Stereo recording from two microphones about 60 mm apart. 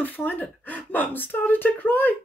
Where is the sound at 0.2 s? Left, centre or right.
Left.